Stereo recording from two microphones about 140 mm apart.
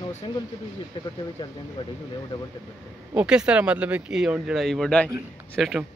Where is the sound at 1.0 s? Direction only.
30° left (ahead or behind).